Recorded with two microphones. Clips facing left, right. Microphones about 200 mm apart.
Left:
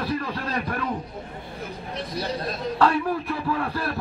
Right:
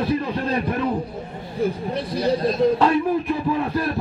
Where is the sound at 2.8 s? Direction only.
20° right (ahead or behind).